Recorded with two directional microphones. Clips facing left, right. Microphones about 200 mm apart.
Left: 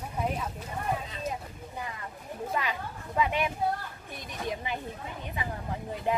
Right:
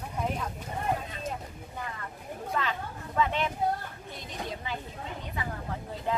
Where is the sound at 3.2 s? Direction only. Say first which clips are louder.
Even; 15° left (ahead or behind).